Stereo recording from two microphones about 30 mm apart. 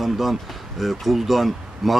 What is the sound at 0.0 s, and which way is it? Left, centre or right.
Speech, centre.